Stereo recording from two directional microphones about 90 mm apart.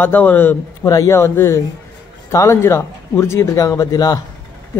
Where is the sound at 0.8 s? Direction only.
40° left (ahead or behind).